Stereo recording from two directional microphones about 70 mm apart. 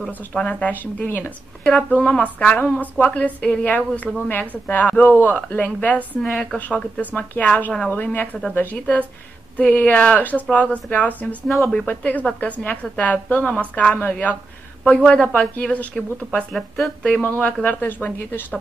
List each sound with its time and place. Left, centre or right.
0.3 s a woman's voice: centre
1.6 s a woman's voice: centre
16.5 s speech: centre
17.0 s a woman's voice: centre